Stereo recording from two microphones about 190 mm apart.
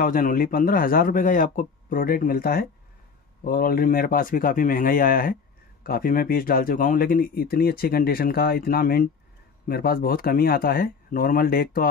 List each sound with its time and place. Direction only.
0.0 s speech: 50° left (ahead or behind)